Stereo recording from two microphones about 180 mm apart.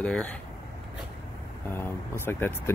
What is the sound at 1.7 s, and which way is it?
Speech, 10° left (ahead or behind).